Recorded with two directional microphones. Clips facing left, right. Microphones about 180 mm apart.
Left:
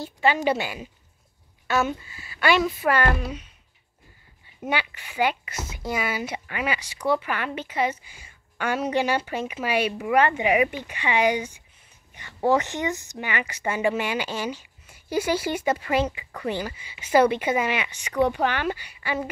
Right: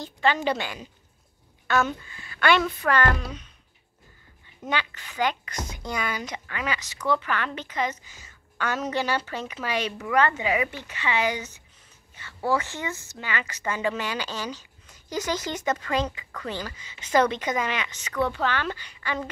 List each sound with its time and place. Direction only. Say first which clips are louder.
0.0 s speech: left 2 dB; 10° left (ahead or behind)
4.6 s speech: left 2 dB; 10° left (ahead or behind)